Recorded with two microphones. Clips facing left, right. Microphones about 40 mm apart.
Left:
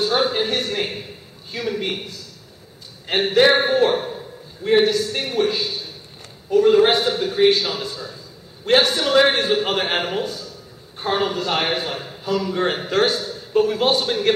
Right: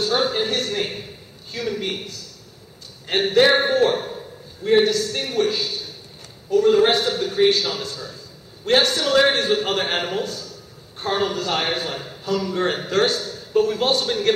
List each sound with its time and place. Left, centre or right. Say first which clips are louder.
0.0 s a man's voice: left 1 dB; centre